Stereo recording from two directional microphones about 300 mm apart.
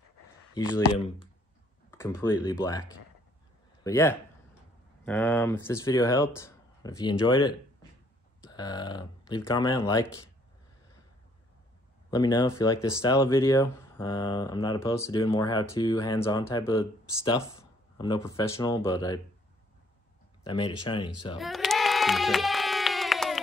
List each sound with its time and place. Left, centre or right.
0.6 s speech: centre
12.1 s speech: centre
17.9 s speech: centre
20.4 s speech: centre
21.4 s a sound: centre